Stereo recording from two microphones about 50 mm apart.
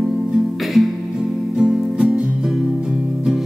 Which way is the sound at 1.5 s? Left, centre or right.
Centre.